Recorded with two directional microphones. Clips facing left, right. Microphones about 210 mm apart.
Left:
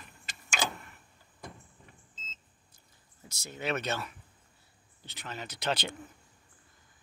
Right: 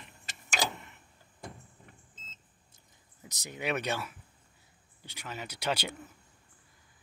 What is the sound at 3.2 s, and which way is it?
Speech, 15° right (ahead or behind).